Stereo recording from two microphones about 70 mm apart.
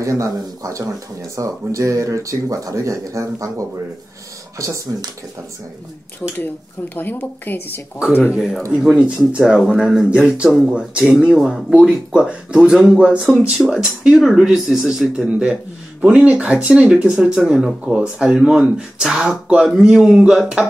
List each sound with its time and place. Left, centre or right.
0.0 s speech: right
7.0 s a woman's voice: left
8.4 s speech: centre
8.8 s a man's voice: centre